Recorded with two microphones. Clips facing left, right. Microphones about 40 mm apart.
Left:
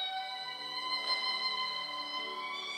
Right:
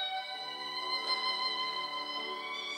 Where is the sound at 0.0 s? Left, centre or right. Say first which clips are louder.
Right 1 dB; centre.